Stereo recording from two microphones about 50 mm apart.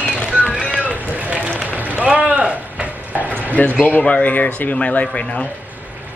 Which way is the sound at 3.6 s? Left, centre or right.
Left.